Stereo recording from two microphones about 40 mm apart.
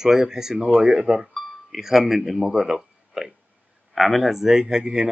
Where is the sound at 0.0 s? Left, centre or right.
Centre.